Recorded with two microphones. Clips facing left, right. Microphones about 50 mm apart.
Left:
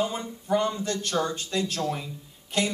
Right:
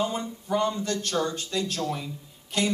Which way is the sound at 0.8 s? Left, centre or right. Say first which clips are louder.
Even; left.